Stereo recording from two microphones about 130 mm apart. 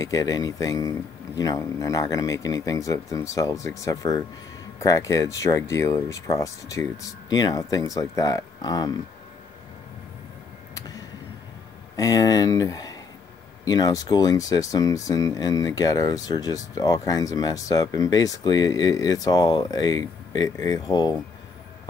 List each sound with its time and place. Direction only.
0.0 s speech: 25° left (ahead or behind)
12.0 s speech: 30° left (ahead or behind)